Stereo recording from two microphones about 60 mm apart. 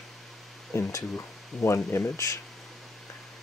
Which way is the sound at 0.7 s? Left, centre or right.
Left.